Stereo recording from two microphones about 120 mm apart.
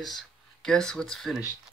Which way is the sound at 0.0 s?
Centre (ahead or behind).